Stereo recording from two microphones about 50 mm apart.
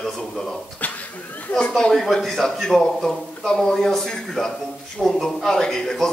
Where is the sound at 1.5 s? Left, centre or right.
Left.